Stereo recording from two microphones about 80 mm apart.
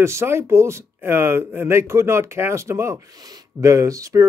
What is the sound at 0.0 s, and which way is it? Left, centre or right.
Speech, right.